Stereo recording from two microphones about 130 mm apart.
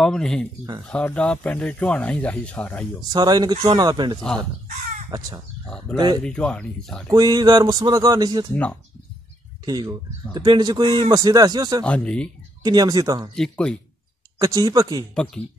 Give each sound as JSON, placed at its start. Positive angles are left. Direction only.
{"t": 0.0, "sound": "speech", "side_deg": 5}
{"t": 3.1, "sound": "speech", "side_deg": -35}
{"t": 6.2, "sound": "speech", "side_deg": 5}
{"t": 7.1, "sound": "speech", "side_deg": -30}
{"t": 9.7, "sound": "speech", "side_deg": -30}
{"t": 11.8, "sound": "speech", "side_deg": 10}
{"t": 12.6, "sound": "speech", "side_deg": -30}
{"t": 13.4, "sound": "speech", "side_deg": 5}
{"t": 14.4, "sound": "speech", "side_deg": -30}